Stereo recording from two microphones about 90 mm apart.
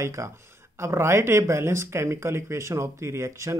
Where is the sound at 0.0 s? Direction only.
35° right (ahead or behind).